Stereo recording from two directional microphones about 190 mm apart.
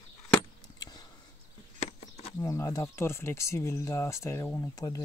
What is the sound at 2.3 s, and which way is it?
Speech, 15° left (ahead or behind).